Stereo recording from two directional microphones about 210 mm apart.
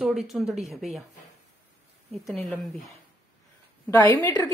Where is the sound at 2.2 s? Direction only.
5° left (ahead or behind).